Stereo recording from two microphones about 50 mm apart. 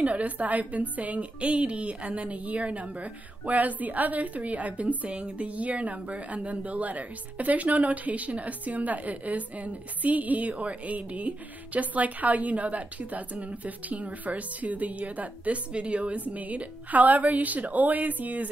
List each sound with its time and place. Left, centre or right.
0.0 s a woman's voice: right